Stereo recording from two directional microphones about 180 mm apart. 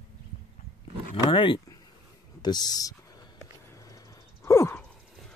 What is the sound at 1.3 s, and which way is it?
Speech, 25° left (ahead or behind).